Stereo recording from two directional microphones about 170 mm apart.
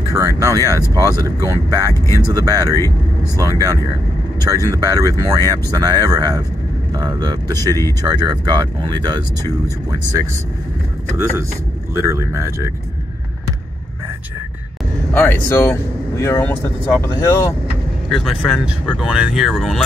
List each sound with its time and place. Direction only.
0.1 s speech: 20° right (ahead or behind)
11.9 s speech: 15° right (ahead or behind)
15.1 s speech: 15° left (ahead or behind)
18.1 s speech: centre (ahead or behind)